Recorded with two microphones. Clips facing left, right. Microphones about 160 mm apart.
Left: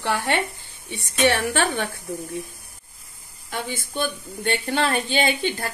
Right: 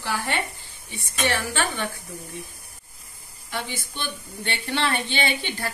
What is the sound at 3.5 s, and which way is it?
Speech, 50° left (ahead or behind).